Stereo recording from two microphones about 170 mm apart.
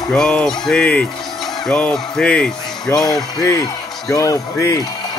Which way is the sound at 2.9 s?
20° left (ahead or behind).